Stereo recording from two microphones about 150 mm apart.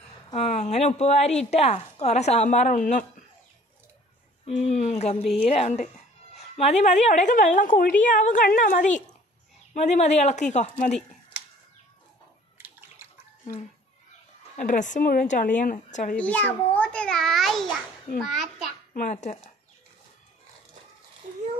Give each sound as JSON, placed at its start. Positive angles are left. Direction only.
{"t": 0.3, "sound": "a woman's voice", "side_deg": 50}
{"t": 4.5, "sound": "a woman's voice", "side_deg": 50}
{"t": 12.5, "sound": "a sound", "side_deg": -15}
{"t": 14.6, "sound": "a woman's voice", "side_deg": 55}
{"t": 16.2, "sound": "a sound", "side_deg": 10}
{"t": 18.9, "sound": "a woman's voice", "side_deg": 50}